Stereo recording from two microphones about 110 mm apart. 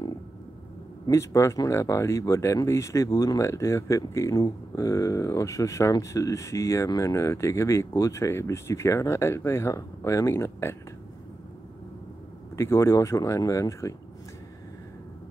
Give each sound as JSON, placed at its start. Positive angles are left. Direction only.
{"t": 1.1, "sound": "speech", "side_deg": 25}
{"t": 12.5, "sound": "speech", "side_deg": 25}